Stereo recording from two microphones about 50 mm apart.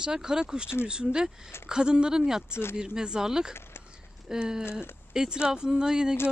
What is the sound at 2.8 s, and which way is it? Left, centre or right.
Speech, centre.